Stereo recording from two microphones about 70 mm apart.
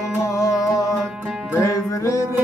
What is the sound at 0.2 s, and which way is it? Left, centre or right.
Music, left.